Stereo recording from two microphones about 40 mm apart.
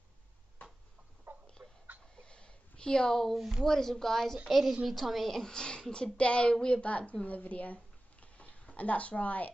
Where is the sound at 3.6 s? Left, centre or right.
Centre.